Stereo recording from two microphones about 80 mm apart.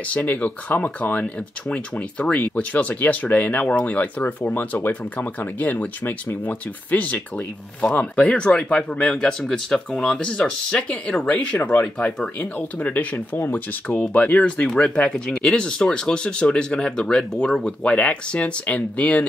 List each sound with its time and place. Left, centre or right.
0.1 s speech: left